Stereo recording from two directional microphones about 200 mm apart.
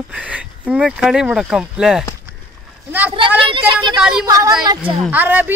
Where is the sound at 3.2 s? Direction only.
25° right (ahead or behind); by 5.5 s 10° right (ahead or behind).